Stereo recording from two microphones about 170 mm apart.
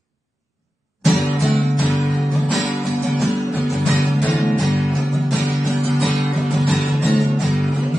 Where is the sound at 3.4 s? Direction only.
15° left (ahead or behind).